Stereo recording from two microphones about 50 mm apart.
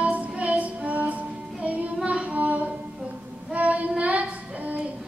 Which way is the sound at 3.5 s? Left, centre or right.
Right.